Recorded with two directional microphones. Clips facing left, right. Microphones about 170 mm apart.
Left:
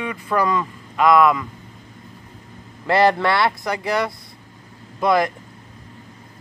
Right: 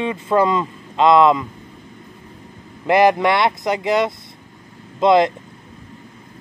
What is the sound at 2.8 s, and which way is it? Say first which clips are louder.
Speech: right 3 dB; 15° right (ahead or behind).